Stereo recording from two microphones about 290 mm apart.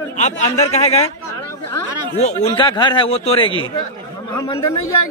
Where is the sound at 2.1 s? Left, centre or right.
Left.